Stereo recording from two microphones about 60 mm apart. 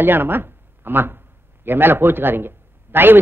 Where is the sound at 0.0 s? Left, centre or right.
Right.